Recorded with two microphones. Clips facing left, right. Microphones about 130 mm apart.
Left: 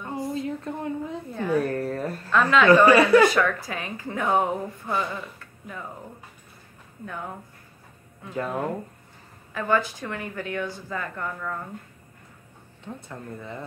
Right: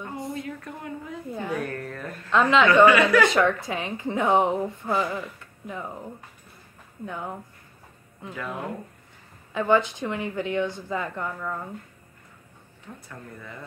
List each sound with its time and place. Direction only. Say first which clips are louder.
0.3 s a woman's voice: left 4 dB; 25° left (ahead or behind)
2.3 s a woman's voice: even; 20° right (ahead or behind)
2.7 s speech: left 3 dB; 35° left (ahead or behind)
3.3 s a woman's voice: right 1 dB; 25° right (ahead or behind)
8.4 s speech: left 6 dB; 40° left (ahead or behind)
9.5 s a woman's voice: right 3 dB; 20° right (ahead or behind)
12.8 s speech: left 5 dB; 25° left (ahead or behind)